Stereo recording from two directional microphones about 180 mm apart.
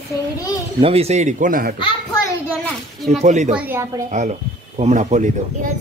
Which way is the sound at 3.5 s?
10° right (ahead or behind).